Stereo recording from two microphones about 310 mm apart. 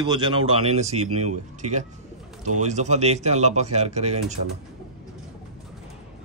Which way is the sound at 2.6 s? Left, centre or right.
Right.